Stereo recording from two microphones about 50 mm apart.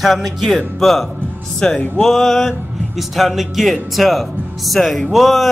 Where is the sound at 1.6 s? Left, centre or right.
Centre.